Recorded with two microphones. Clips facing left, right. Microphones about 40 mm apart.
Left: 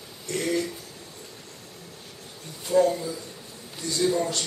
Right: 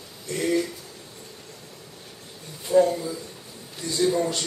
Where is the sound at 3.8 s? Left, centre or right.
Centre.